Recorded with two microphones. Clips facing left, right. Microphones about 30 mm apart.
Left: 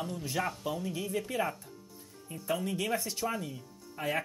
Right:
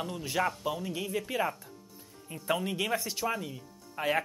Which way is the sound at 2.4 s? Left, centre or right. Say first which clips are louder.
Right 2 dB; right.